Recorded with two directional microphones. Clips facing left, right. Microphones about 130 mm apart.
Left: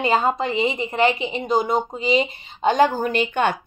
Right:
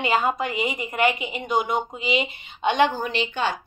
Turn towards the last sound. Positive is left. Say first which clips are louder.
# left 5 dB
turn(degrees=55)  # may be behind; listen again after turning